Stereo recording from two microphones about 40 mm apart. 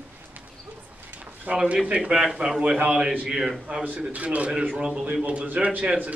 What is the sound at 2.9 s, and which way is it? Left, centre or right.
Speech, centre.